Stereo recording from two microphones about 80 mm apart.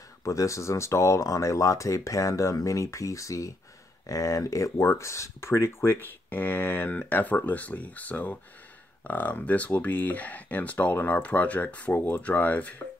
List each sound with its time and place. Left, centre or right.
0.2 s speech: left; by 12.8 s centre